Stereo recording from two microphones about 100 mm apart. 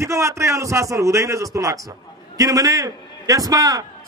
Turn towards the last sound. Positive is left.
turn(degrees=-40)  # may be behind; listen again after turning